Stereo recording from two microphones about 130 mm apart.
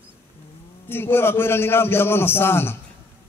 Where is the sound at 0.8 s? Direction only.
15° left (ahead or behind).